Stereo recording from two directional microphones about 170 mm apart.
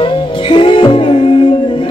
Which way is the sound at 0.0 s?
30° left (ahead or behind).